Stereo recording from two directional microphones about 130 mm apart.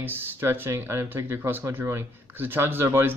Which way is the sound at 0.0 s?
15° right (ahead or behind).